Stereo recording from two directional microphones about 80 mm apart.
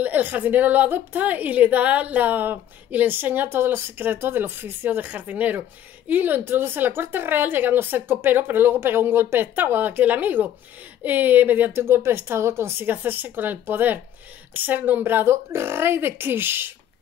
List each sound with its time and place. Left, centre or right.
0.0 s a woman's voice: right